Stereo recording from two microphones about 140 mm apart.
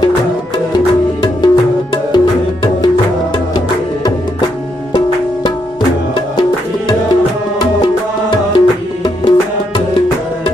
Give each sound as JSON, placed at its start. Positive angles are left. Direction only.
{"t": 0.7, "sound": "music", "side_deg": 30}
{"t": 8.5, "sound": "music", "side_deg": 30}